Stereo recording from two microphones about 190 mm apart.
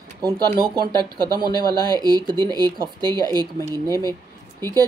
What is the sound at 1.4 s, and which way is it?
Speech, 20° left (ahead or behind).